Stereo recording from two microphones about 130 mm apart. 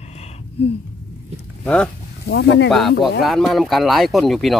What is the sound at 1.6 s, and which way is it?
Speech, 5° left (ahead or behind).